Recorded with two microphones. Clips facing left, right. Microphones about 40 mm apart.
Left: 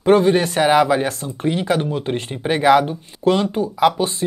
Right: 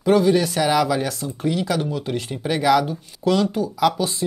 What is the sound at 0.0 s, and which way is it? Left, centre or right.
Speech, left.